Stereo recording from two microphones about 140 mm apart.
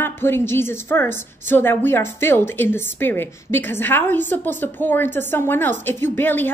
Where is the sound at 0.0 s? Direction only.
15° left (ahead or behind).